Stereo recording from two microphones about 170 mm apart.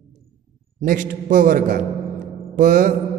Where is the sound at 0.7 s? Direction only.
50° right (ahead or behind).